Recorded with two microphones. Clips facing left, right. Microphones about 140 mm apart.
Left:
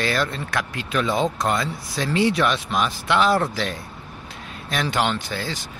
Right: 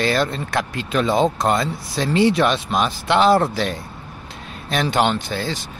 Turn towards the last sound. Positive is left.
turn(degrees=-30)  # may be behind; listen again after turning